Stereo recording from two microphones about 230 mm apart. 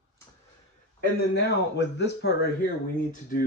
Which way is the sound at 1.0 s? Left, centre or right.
Left.